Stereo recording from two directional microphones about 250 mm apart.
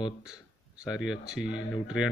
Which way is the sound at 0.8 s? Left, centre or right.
Centre.